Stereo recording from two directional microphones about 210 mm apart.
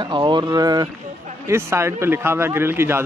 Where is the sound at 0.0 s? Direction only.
20° right (ahead or behind).